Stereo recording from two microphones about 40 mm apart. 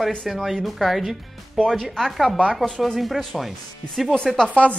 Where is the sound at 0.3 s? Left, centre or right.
Centre.